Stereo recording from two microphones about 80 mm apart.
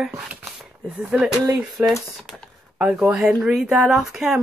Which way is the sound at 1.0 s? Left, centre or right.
Centre.